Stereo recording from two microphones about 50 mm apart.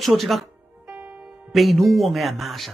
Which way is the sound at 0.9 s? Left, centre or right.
Right.